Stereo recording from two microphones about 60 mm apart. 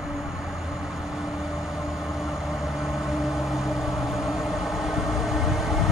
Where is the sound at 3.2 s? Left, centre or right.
Centre.